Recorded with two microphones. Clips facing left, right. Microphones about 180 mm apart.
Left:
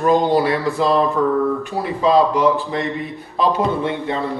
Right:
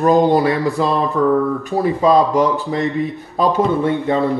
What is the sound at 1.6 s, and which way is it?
Speech, 40° right (ahead or behind).